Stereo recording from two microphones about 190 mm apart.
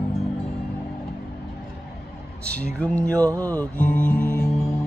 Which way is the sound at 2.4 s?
5° left (ahead or behind).